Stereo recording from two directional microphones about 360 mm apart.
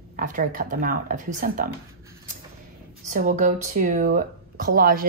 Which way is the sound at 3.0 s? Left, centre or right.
Right.